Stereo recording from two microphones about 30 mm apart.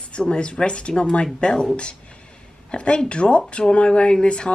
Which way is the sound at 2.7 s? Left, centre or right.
Left.